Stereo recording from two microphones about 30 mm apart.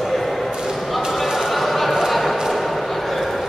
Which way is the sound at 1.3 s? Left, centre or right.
Centre.